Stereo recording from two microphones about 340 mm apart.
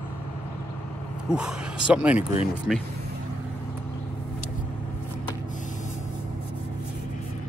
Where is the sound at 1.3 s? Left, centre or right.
Centre.